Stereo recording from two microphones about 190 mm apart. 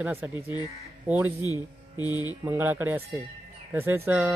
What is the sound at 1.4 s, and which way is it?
Speech, 20° left (ahead or behind).